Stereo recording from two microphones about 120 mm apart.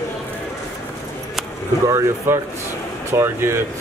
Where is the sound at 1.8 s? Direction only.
25° right (ahead or behind).